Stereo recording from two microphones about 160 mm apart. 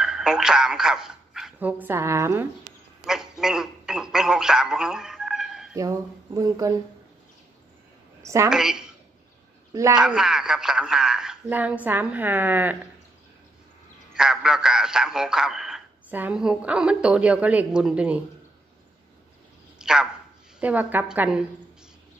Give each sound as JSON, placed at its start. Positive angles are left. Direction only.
{"t": 0.0, "sound": "speech", "side_deg": -5}
{"t": 3.1, "sound": "speech", "side_deg": -5}
{"t": 5.8, "sound": "speech", "side_deg": -20}
{"t": 8.2, "sound": "a sound", "side_deg": -20}
{"t": 8.5, "sound": "a woman's voice", "side_deg": -5}
{"t": 9.7, "sound": "a sound", "side_deg": -20}
{"t": 9.9, "sound": "a woman's voice", "side_deg": -5}
{"t": 14.1, "sound": "a man's voice", "side_deg": -5}
{"t": 19.8, "sound": "a woman's voice", "side_deg": -5}